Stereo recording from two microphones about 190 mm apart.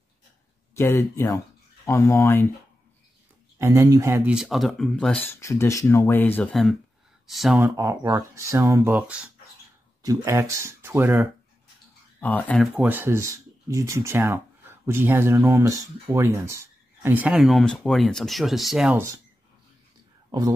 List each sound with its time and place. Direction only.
0.7 s speech: 15° left (ahead or behind)
3.5 s speech: 15° right (ahead or behind)
7.6 s speech: 15° right (ahead or behind)
10.0 s speech: 15° right (ahead or behind)
12.2 s speech: 10° left (ahead or behind)
12.7 s speech: 10° right (ahead or behind)
20.2 s a sound: 20° right (ahead or behind)